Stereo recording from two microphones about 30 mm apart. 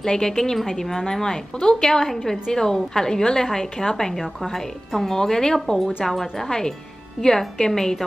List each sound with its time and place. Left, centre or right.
0.0 s a woman's voice: centre
5.0 s a woman's voice: centre
6.0 s a woman's voice: centre